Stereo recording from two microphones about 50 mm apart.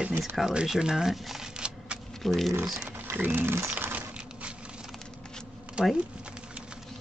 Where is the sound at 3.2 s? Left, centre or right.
Right.